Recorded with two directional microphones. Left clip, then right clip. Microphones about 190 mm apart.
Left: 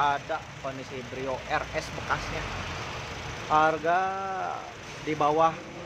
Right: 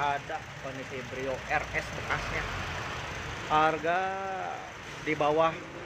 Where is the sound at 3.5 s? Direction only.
10° left (ahead or behind).